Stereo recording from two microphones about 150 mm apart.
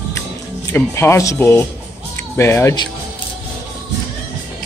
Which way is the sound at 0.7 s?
15° left (ahead or behind).